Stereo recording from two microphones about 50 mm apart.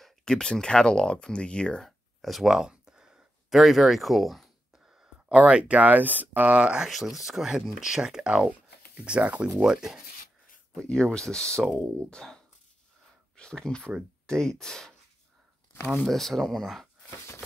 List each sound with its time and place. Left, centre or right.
0.2 s speech: centre
1.9 s a sound: centre
5.0 s speech: right
6.6 s speech: centre
6.9 s speech: centre; by 9.5 s right
9.6 s speech: centre
10.9 s speech: centre
13.4 s speech: centre
16.1 s speech: centre